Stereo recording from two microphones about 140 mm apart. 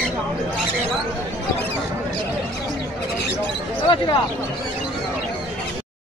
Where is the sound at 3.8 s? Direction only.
35° left (ahead or behind).